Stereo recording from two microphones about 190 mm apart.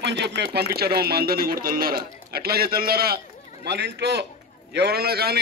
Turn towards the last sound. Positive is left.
turn(degrees=-55)  # may be behind; listen again after turning